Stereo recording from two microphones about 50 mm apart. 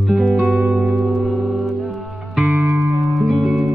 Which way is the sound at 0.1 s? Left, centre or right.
Centre.